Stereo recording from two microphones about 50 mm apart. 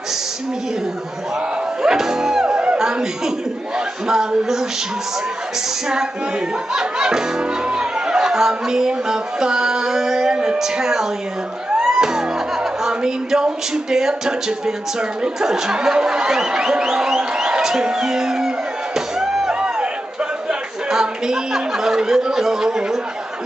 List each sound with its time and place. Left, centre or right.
1.8 s speech: centre
6.7 s speech: centre
11.7 s music: centre
12.8 s speech: centre
18.9 s music: centre
20.9 s speech: centre